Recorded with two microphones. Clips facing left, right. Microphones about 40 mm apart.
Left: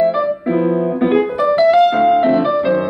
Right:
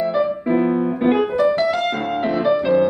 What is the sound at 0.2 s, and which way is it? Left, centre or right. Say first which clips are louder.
Music: left 2 dB; centre.